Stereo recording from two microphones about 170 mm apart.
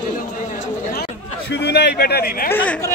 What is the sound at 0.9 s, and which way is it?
Speech, 70° left (ahead or behind).